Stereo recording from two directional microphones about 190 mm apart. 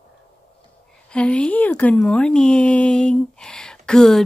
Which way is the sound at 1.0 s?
5° left (ahead or behind).